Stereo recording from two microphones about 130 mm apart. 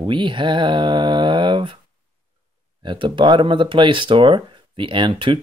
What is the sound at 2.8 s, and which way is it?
Speech, 40° right (ahead or behind).